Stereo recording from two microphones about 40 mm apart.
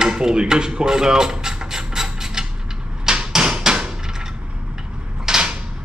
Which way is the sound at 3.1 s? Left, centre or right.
Centre.